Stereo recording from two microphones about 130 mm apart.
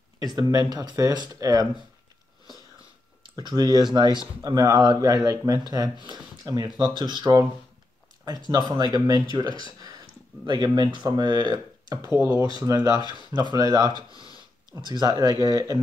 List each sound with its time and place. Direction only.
0.4 s speech: 30° right (ahead or behind)
3.3 s speech: 30° right (ahead or behind)
8.5 s speech: 30° right (ahead or behind)
12.1 s speech: 20° right (ahead or behind)
12.5 s speech: 30° right (ahead or behind)